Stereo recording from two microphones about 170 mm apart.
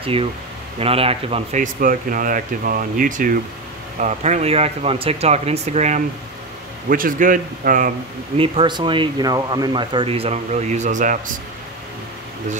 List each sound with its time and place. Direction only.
0.0 s speech: 35° right (ahead or behind)
1.6 s speech: 55° right (ahead or behind)
4.0 s speech: 40° right (ahead or behind)
6.9 s speech: 55° right (ahead or behind)
8.4 s speech: 30° right (ahead or behind); by 11.3 s 50° right (ahead or behind)